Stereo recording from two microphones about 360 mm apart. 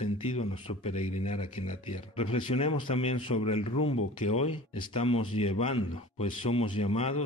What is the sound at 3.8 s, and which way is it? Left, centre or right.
Speech, left.